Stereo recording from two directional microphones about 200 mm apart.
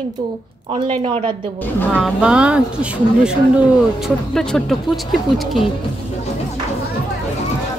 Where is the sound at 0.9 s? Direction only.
30° right (ahead or behind).